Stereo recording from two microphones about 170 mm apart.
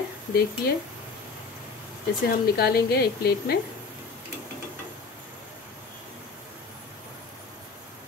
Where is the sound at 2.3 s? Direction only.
65° left (ahead or behind).